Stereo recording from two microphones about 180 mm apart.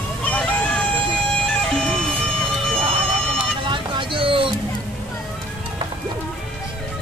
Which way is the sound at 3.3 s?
25° right (ahead or behind).